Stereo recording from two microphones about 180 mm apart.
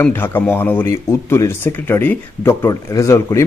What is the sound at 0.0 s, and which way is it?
Speech, 10° left (ahead or behind).